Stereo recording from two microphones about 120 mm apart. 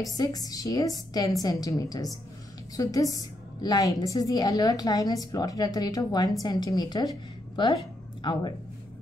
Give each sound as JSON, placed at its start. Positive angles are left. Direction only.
{"t": 0.0, "sound": "a woman's voice", "side_deg": 30}